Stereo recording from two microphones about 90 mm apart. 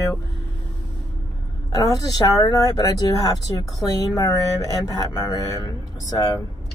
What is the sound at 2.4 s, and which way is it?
Speech, 40° left (ahead or behind).